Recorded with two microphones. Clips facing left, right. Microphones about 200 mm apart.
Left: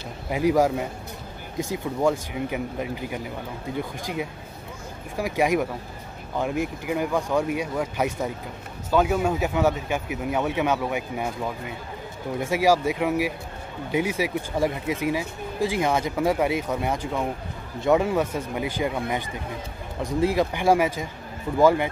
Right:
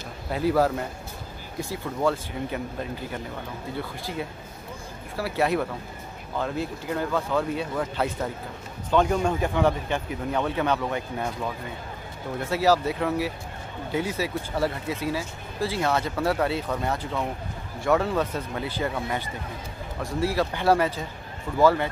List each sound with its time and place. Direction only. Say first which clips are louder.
0.3 s speech: left 2 dB; 15° left (ahead or behind)